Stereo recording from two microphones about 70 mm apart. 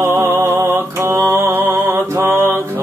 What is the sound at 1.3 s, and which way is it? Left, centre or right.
Mantra, right.